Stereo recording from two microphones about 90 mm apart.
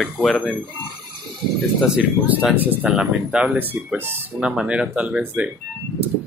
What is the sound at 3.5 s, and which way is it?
Speech, 25° right (ahead or behind).